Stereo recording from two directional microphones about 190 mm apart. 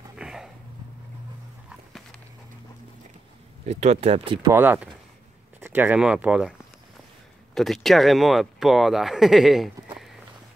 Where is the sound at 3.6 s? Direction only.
35° right (ahead or behind).